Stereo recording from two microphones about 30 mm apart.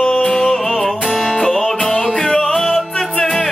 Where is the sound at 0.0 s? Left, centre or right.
Left.